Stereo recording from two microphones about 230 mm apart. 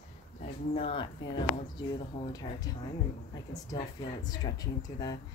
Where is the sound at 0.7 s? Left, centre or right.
Left.